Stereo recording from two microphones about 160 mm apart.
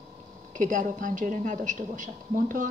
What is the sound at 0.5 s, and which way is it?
A woman's voice, 55° right (ahead or behind).